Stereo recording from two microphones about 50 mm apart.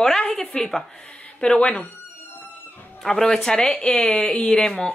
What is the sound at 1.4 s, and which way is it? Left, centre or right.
Speech, left.